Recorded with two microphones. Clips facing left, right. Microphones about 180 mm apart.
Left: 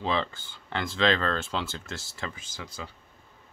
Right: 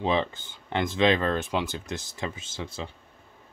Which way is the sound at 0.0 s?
20° right (ahead or behind).